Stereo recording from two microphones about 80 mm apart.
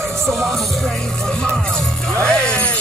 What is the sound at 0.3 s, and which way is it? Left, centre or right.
Music, centre.